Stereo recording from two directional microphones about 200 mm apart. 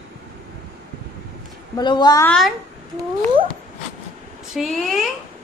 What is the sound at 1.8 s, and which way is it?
Speech, 20° left (ahead or behind).